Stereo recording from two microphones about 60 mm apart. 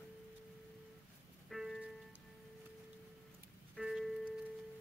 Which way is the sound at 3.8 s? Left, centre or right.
Centre.